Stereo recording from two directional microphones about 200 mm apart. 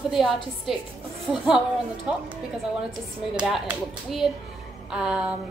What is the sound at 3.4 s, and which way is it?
Speech, 5° right (ahead or behind).